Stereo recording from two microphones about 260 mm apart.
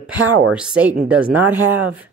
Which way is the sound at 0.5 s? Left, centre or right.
Centre.